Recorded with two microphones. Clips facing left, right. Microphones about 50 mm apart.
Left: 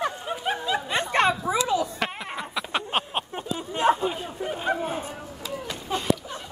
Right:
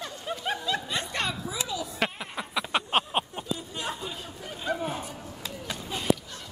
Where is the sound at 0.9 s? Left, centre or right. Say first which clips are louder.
Left 9 dB; left.